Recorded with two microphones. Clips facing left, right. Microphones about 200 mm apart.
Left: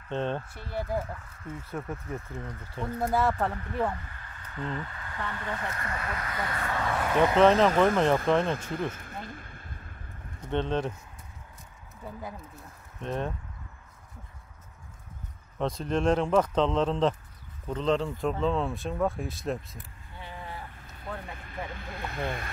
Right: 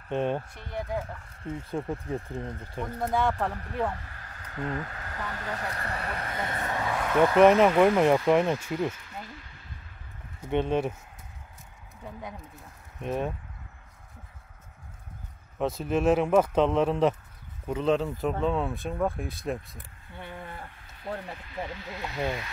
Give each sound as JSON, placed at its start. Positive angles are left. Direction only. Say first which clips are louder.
{"t": 0.1, "sound": "speech", "louder": "right 3 dB", "side_deg": -10}
{"t": 1.4, "sound": "speech", "louder": "right 5 dB", "side_deg": -25}
{"t": 3.0, "sound": "speech", "louder": "left 1 dB", "side_deg": 5}
{"t": 4.2, "sound": "speech", "louder": "right 2 dB", "side_deg": -40}
{"t": 6.8, "sound": "speech", "louder": "left 1 dB", "side_deg": 0}
{"t": 7.4, "sound": "speech", "louder": "right 3 dB", "side_deg": -15}
{"t": 8.7, "sound": "a sound", "louder": "right 2 dB", "side_deg": 50}
{"t": 10.4, "sound": "speech", "louder": "right 3 dB", "side_deg": -10}
{"t": 13.0, "sound": "speech", "louder": "right 2 dB", "side_deg": -10}
{"t": 15.6, "sound": "speech", "louder": "right 2 dB", "side_deg": -5}
{"t": 20.2, "sound": "a sound", "louder": "right 1 dB", "side_deg": -55}
{"t": 21.5, "sound": "speech", "louder": "right 2 dB", "side_deg": 50}